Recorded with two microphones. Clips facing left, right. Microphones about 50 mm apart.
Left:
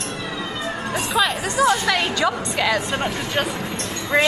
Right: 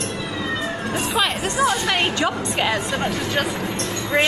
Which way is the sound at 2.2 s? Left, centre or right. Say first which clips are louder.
Left 1 dB; right.